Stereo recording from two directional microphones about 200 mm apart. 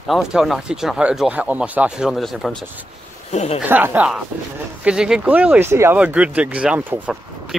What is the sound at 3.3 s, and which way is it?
Speech, 30° left (ahead or behind).